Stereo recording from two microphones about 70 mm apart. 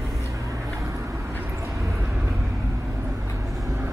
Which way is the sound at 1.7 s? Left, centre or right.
Centre.